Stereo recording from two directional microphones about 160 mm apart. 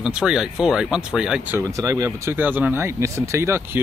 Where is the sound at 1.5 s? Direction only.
20° right (ahead or behind).